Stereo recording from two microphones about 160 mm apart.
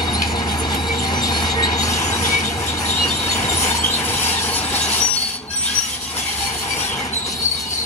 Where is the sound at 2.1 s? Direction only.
15° left (ahead or behind).